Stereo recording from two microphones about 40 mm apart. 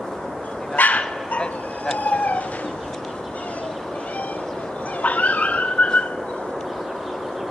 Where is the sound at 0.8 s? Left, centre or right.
Left.